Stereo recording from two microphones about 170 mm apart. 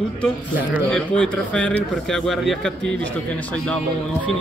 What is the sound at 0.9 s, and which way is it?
Speech, 5° left (ahead or behind).